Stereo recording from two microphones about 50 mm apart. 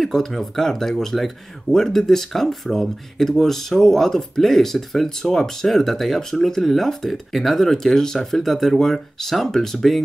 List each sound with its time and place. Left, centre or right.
0.0 s speech: centre